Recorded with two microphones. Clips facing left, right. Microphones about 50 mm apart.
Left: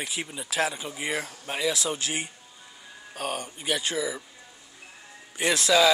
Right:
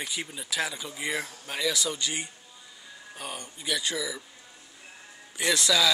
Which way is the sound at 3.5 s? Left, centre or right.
Left.